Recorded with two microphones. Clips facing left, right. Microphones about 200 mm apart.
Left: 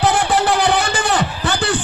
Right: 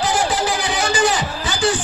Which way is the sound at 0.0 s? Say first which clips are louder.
Left 3 dB; 60° left (ahead or behind).